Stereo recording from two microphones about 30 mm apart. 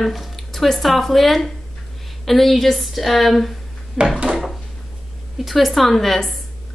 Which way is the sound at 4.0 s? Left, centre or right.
Right.